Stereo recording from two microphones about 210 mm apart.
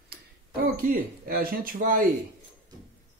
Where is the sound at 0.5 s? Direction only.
45° right (ahead or behind).